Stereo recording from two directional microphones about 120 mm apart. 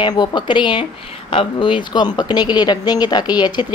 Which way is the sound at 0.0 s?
35° left (ahead or behind).